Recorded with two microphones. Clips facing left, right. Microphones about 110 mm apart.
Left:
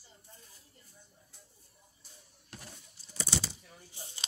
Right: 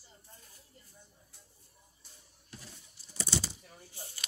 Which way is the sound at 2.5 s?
65° left (ahead or behind).